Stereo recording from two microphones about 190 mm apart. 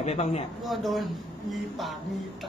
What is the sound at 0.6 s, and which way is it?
Speech, centre (ahead or behind).